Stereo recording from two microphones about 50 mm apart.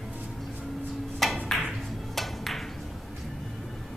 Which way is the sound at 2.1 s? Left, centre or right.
Centre.